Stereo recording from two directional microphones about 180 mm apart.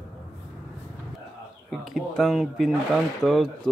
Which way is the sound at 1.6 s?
Centre (ahead or behind).